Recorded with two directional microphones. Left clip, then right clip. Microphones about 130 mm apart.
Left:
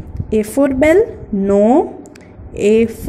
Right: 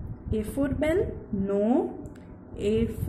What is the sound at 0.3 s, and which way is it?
Speech, 40° left (ahead or behind).